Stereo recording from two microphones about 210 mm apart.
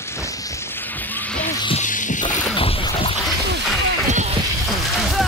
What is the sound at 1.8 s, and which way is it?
Music, 35° left (ahead or behind).